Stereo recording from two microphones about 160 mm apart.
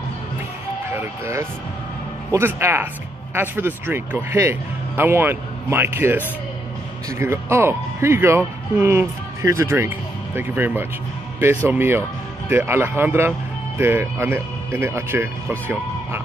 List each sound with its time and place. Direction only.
0.9 s speech: 15° right (ahead or behind)